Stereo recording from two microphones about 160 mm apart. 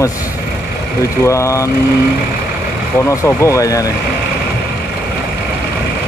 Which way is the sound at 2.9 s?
15° left (ahead or behind).